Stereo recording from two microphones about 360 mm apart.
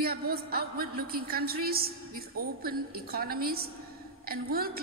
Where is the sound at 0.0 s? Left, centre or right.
Right.